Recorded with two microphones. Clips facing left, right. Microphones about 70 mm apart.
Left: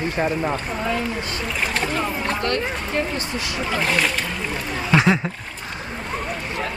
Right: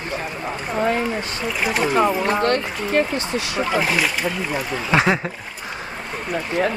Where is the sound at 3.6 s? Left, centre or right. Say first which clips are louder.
Even; centre.